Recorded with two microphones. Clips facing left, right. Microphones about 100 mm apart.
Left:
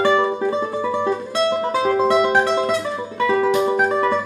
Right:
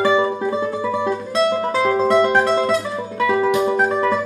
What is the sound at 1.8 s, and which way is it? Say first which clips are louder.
Music: right 1 dB; 15° left (ahead or behind).